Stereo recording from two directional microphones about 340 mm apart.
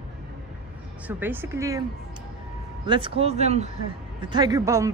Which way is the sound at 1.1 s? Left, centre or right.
Centre.